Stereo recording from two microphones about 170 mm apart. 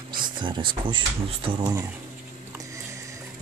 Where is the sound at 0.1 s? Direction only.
25° right (ahead or behind).